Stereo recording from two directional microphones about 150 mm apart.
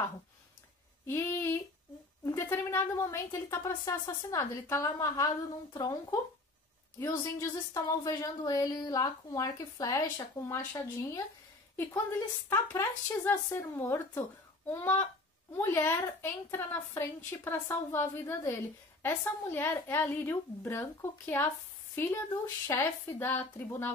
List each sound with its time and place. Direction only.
1.0 s a woman's voice: 15° left (ahead or behind)